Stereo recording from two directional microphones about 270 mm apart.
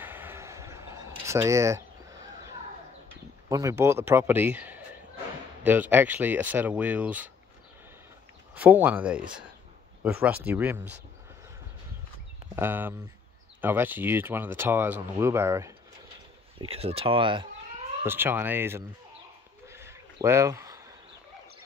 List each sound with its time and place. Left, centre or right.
0.0 s a sound: centre
3.4 s speech: centre
8.5 s speech: centre
12.5 s speech: centre
16.5 s speech: right
18.0 s speech: centre
19.7 s a sound: centre